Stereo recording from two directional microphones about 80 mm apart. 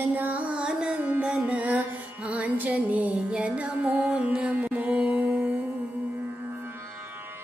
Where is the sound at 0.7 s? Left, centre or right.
Centre.